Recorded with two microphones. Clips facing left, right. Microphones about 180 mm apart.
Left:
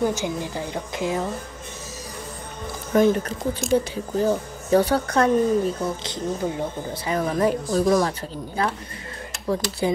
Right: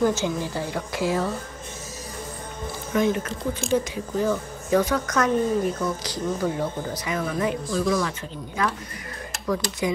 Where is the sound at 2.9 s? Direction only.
40° left (ahead or behind); by 7.1 s 20° left (ahead or behind).